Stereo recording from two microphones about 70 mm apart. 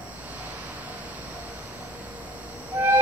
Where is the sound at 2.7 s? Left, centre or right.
Right.